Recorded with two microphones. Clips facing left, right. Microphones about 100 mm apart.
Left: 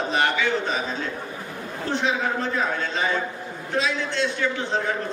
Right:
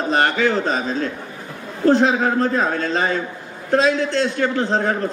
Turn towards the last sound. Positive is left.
turn(degrees=-45)  # may be behind; listen again after turning